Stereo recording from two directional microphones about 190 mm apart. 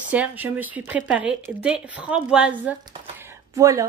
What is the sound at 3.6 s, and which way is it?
Speech, 15° right (ahead or behind).